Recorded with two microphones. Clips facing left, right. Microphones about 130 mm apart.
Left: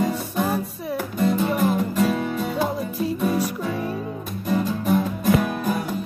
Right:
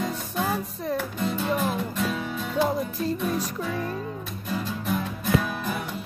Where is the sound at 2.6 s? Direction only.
10° left (ahead or behind).